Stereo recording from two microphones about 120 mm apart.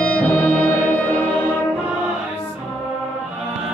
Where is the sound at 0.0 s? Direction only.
10° left (ahead or behind).